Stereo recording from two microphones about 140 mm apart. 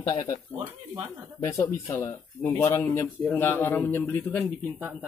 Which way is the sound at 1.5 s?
15° left (ahead or behind).